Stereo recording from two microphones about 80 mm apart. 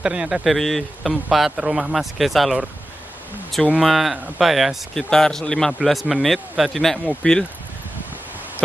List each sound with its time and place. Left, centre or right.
0.0 s speech: centre
3.8 s speech: centre
7.2 s speech: centre